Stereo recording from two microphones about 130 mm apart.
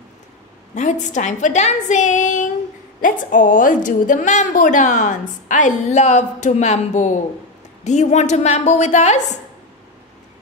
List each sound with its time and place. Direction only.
0.7 s a woman's voice: 70° left (ahead or behind)
3.0 s a woman's voice: 90° left; by 9.4 s 65° left (ahead or behind)